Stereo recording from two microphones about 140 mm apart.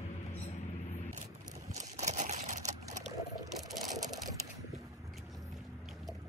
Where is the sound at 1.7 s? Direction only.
55° right (ahead or behind).